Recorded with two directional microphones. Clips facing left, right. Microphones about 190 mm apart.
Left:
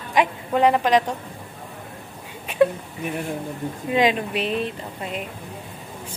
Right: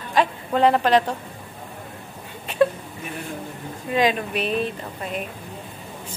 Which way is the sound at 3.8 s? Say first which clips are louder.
Left 1 dB; 20° left (ahead or behind).